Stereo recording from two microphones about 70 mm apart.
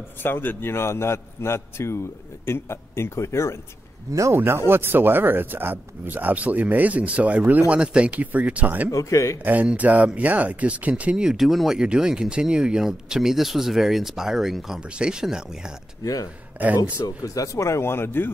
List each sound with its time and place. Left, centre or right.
0.2 s a man's voice: left
4.3 s speech: right
8.9 s speech: left
9.4 s speech: right
16.0 s speech: left
16.5 s speech: right
17.2 s a man's voice: left